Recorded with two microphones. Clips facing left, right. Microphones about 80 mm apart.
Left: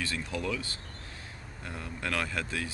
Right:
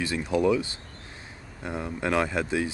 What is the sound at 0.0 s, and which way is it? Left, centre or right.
Speech, centre.